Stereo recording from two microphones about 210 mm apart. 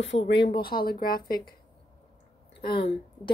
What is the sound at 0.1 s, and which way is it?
Speech, 35° left (ahead or behind).